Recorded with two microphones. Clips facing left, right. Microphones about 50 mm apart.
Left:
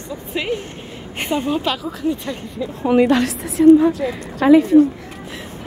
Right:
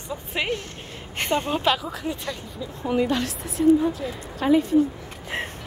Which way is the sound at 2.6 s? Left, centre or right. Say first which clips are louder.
Left 9 dB; left.